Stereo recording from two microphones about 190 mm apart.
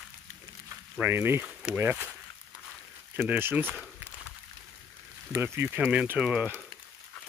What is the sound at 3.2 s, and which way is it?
Speech, 10° right (ahead or behind).